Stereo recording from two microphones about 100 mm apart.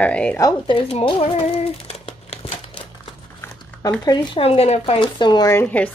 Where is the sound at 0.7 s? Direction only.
60° left (ahead or behind); by 2.4 s 90° left.